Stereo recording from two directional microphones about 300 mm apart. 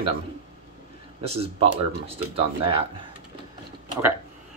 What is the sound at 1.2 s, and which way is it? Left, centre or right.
Speech, centre.